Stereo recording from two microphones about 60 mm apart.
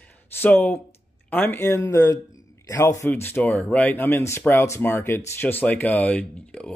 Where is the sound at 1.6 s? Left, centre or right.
Left.